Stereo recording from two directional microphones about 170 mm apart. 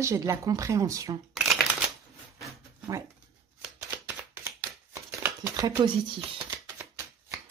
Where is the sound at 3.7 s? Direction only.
10° right (ahead or behind).